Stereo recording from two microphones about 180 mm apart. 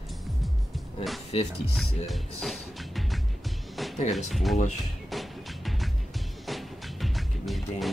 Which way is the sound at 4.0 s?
40° left (ahead or behind).